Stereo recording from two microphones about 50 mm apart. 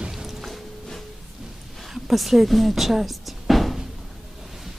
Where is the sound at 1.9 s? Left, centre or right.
Centre.